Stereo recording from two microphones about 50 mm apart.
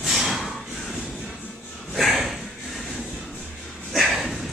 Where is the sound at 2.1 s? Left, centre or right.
Centre.